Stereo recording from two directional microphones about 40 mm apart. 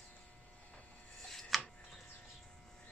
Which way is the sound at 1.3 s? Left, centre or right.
Centre.